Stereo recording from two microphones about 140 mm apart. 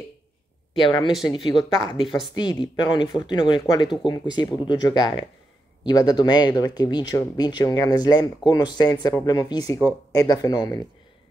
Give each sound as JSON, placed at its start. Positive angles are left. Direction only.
{"t": 0.7, "sound": "speech", "side_deg": 35}